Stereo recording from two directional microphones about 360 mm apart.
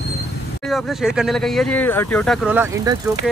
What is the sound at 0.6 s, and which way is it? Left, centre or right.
Speech, centre.